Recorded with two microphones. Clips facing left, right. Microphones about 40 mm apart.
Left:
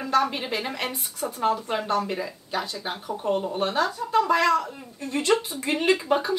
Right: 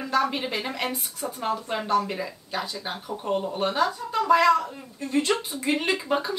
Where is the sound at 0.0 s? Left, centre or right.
Centre.